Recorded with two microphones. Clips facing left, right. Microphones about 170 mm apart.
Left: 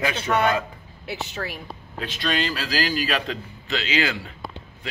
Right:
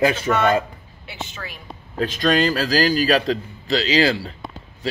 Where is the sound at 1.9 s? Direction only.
45° right (ahead or behind).